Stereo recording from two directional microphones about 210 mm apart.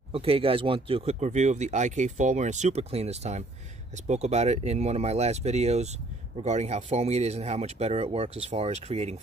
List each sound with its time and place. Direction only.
0.1 s speech: 25° right (ahead or behind)